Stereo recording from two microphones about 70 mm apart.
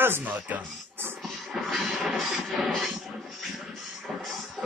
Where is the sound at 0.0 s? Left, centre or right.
Right.